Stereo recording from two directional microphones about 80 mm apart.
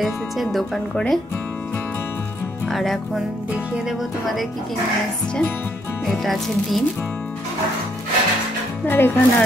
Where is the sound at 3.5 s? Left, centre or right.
Centre.